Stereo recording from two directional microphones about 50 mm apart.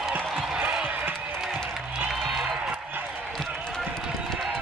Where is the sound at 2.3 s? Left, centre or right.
Centre.